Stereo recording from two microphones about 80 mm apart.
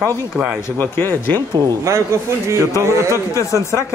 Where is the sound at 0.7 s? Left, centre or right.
Left.